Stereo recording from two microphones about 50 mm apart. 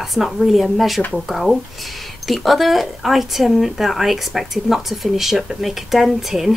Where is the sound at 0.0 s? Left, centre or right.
Centre.